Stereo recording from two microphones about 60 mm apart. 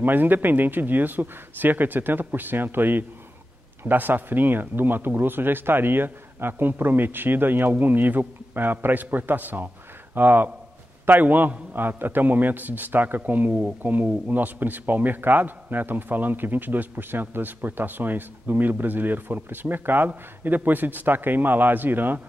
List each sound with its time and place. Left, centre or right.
0.0 s a man's voice: right